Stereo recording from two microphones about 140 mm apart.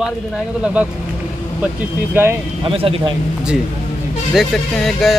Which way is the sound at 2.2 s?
15° right (ahead or behind).